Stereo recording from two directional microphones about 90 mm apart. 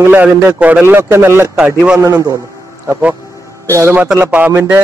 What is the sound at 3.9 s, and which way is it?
Speech, 20° right (ahead or behind).